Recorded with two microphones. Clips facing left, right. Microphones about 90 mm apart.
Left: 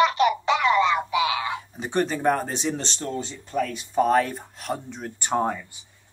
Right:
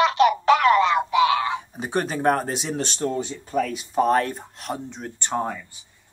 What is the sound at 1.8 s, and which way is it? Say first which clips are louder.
Speech: left 2 dB; 10° right (ahead or behind).